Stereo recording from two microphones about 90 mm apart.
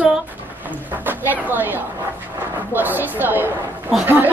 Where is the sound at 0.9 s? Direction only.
20° right (ahead or behind).